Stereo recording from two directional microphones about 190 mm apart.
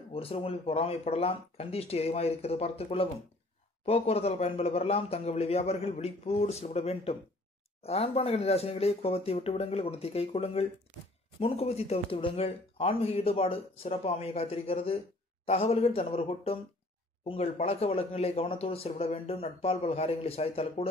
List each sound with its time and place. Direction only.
0.1 s speech: 30° left (ahead or behind)